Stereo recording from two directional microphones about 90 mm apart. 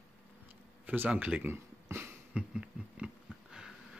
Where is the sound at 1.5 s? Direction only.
25° right (ahead or behind).